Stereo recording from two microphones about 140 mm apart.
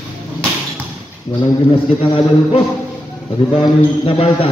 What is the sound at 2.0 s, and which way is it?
Mantra, 40° left (ahead or behind).